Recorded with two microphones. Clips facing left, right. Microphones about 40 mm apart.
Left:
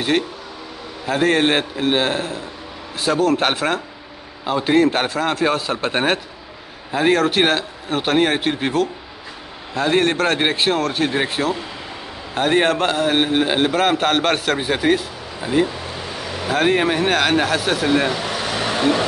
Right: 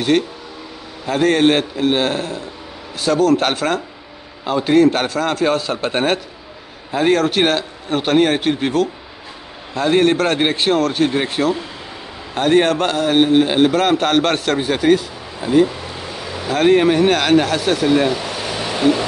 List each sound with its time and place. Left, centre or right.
1.0 s a man's voice: centre
16.4 s a man's voice: centre
18.6 s a sound: left